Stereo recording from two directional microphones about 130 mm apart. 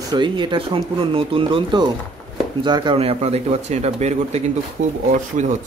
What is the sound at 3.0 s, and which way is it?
Speech, 50° right (ahead or behind).